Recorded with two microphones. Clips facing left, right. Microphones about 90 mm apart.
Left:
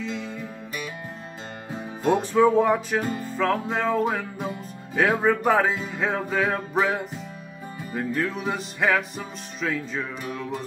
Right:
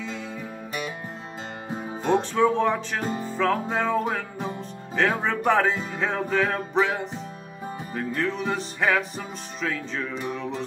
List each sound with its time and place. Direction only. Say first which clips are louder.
0.0 s music: left 2 dB; centre (ahead or behind)
2.3 s speech: left 3 dB; 10° left (ahead or behind)
3.1 s music: even; 30° right (ahead or behind)
3.3 s music: even; centre (ahead or behind)